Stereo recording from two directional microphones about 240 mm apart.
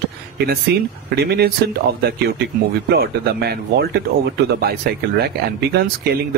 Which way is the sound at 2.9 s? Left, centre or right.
Right.